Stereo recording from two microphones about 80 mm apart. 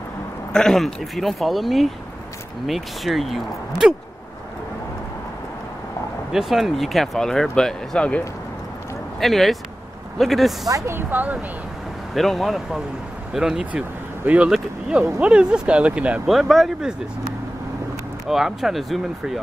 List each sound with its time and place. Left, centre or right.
0.5 s speech: centre
6.3 s speech: centre
9.2 s speech: centre
11.0 s speech: right
12.1 s speech: centre
16.3 s speech: centre
18.2 s speech: centre